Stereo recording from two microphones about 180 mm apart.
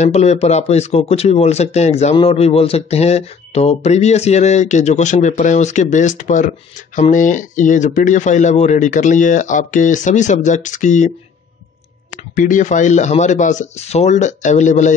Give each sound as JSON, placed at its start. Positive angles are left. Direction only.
{"t": 0.0, "sound": "speech", "side_deg": 35}
{"t": 12.1, "sound": "speech", "side_deg": 45}